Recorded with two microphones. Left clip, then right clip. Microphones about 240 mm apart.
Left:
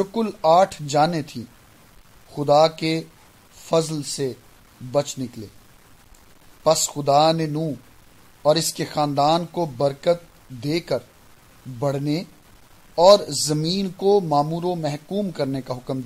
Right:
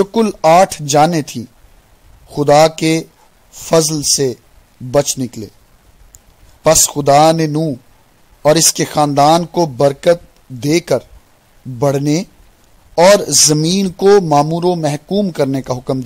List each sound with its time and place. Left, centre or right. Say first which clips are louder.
0.0 s speech: right 9 dB; right
6.6 s a man's voice: right 8 dB; right